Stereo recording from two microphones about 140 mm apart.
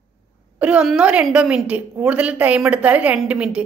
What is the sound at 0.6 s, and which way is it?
A woman's voice, 5° right (ahead or behind).